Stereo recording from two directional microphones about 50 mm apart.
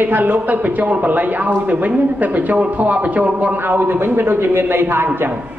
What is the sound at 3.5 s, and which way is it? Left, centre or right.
A man's voice, right.